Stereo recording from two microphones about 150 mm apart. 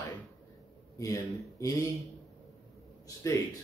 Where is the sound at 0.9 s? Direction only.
20° left (ahead or behind).